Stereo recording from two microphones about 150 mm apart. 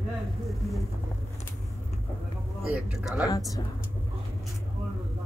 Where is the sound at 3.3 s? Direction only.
25° left (ahead or behind).